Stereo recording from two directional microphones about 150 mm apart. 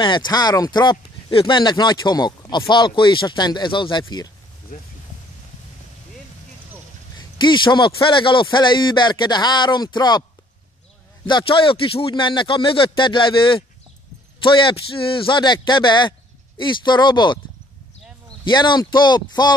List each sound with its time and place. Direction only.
0.0 s speech: 30° left (ahead or behind)
7.2 s a man's voice: 30° left (ahead or behind)
11.2 s a man's voice: 35° left (ahead or behind)
18.4 s speech: 30° left (ahead or behind)